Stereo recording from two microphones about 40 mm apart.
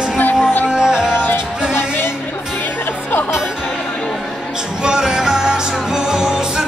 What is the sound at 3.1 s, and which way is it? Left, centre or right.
Music, left.